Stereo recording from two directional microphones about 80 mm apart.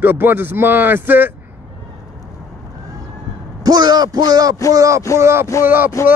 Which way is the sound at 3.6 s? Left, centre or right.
Right.